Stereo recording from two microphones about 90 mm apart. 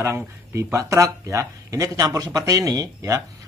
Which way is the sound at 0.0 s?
30° right (ahead or behind).